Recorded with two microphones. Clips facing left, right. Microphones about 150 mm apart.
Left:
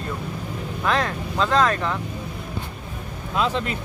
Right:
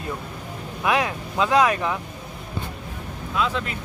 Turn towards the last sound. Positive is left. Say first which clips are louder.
# left 2 dB
turn(degrees=30)  # may be behind; listen again after turning